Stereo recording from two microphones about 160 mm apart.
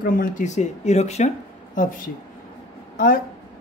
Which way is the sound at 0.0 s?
60° left (ahead or behind).